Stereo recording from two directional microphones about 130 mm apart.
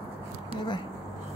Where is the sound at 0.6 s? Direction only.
35° left (ahead or behind).